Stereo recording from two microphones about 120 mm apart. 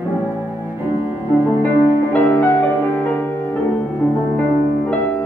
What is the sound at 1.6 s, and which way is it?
Music, 15° left (ahead or behind).